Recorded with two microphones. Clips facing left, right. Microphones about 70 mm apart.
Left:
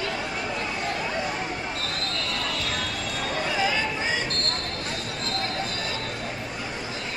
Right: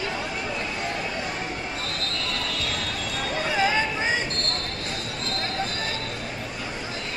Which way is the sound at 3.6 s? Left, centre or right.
Right.